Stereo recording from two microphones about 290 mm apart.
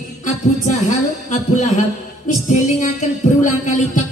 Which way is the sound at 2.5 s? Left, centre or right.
Left.